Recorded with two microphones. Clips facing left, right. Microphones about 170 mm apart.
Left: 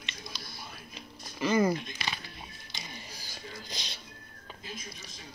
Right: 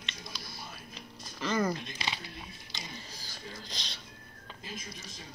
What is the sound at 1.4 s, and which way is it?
Speech, 10° left (ahead or behind).